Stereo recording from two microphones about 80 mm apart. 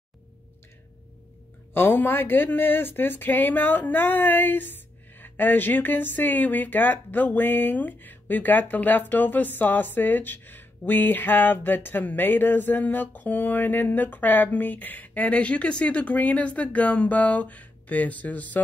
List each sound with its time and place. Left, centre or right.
1.7 s speech: left